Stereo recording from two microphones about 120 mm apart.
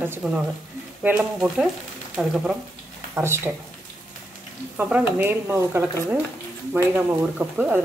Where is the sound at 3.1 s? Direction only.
20° right (ahead or behind).